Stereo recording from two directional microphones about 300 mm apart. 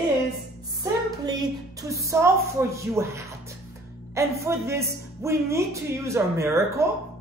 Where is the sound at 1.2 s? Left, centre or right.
Centre.